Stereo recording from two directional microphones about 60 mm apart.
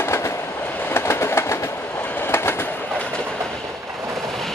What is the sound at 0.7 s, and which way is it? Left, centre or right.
Train, left.